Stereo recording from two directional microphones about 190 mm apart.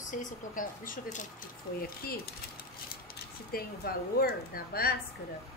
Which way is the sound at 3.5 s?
50° left (ahead or behind).